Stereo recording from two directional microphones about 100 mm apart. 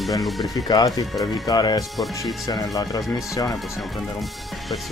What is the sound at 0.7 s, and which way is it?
Speech, 40° left (ahead or behind).